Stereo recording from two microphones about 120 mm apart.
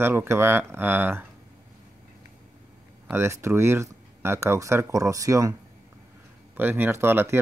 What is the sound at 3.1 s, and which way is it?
Speech, 20° right (ahead or behind).